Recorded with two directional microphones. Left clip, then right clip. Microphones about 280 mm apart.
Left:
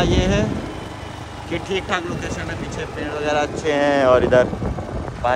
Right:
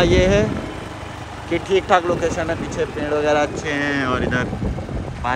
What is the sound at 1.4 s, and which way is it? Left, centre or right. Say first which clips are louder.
Speech: right 6 dB; centre.